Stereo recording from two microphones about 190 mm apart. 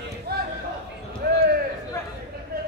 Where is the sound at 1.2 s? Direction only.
60° right (ahead or behind).